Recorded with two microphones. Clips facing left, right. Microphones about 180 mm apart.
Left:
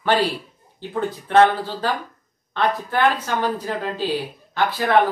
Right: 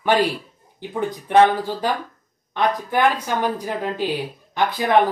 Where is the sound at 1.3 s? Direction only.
15° right (ahead or behind).